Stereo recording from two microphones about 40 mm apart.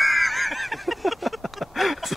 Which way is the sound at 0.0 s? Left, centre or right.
Centre.